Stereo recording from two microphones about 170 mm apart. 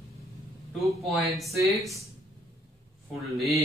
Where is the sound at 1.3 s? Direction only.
Centre (ahead or behind).